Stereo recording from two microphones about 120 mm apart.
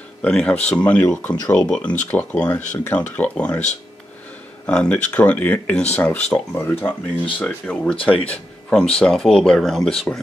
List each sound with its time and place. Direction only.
0.2 s speech: 10° left (ahead or behind)
4.6 s speech: 10° left (ahead or behind)